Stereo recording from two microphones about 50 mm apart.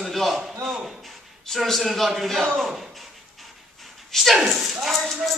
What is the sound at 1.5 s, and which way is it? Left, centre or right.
A man's voice, centre.